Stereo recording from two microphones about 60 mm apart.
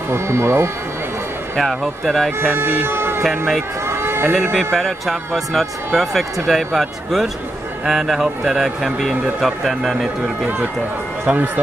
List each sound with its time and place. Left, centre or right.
0.1 s speech: right
1.6 s speech: centre
2.4 s speech: right
3.3 s speech: centre
3.8 s run: right
4.7 s a man's voice: centre
11.2 s a man's voice: right